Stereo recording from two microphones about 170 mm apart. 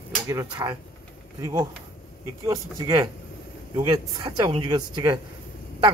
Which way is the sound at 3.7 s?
25° right (ahead or behind).